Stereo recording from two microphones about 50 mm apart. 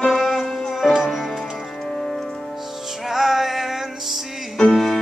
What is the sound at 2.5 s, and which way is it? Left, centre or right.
Music, centre.